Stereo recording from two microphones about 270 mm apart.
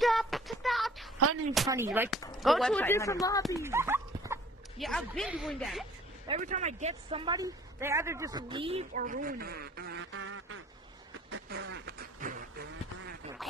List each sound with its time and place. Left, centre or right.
0.0 s child singing: centre
1.9 s speech: centre
3.6 s speech: centre
6.2 s speech: right
11.2 s duck: right
13.4 s a sound: centre